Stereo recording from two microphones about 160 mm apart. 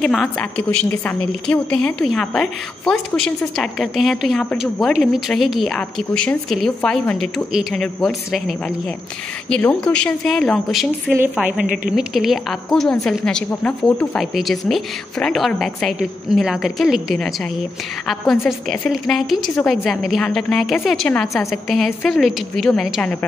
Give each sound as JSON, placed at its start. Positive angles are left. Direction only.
{"t": 0.0, "sound": "a woman's voice", "side_deg": 5}
{"t": 11.6, "sound": "a woman's voice", "side_deg": -60}
{"t": 11.9, "sound": "a woman's voice", "side_deg": 0}